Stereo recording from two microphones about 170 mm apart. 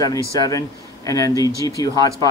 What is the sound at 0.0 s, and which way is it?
A man's voice, 20° left (ahead or behind).